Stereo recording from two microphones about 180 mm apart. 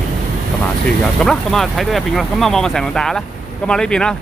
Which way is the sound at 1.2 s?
5° left (ahead or behind).